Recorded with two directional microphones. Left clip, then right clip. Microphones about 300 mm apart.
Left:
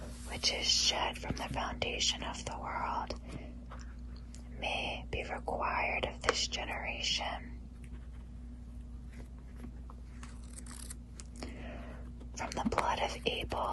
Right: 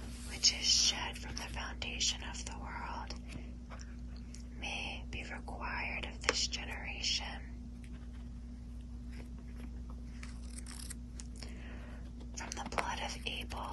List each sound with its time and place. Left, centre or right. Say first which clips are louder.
0.3 s speech: even; centre
5.1 s speech: left 8 dB; centre
11.3 s a sound: left 7 dB; centre
12.4 s speech: left 5 dB; centre